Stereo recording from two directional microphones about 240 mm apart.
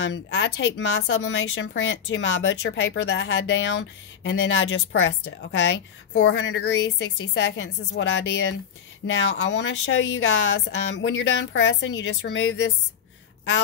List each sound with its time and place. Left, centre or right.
0.0 s a woman's voice: left
6.2 s a woman's voice: left